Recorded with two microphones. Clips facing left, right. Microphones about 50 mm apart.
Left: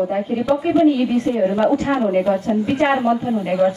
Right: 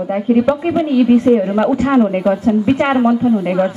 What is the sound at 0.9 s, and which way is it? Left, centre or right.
A woman's voice, right.